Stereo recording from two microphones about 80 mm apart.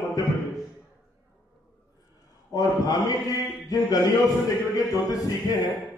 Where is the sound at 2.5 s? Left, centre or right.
Left.